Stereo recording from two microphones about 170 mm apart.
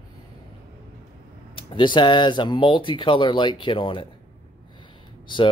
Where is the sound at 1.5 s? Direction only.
30° left (ahead or behind).